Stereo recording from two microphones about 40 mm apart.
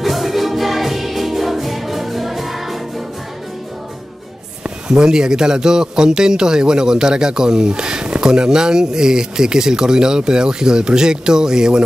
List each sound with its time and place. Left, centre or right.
0.0 s music: centre
4.8 s a man's voice: centre